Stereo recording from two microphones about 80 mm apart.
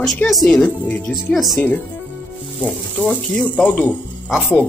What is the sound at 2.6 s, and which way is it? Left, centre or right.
Speech, centre.